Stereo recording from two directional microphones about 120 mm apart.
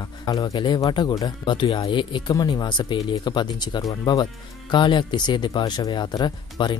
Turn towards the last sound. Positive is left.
turn(degrees=40)  # may be behind; listen again after turning